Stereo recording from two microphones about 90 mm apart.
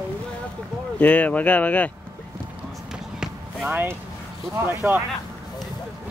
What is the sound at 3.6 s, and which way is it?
Speech, 25° right (ahead or behind).